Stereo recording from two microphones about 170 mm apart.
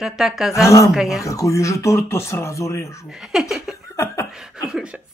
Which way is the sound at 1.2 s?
20° left (ahead or behind).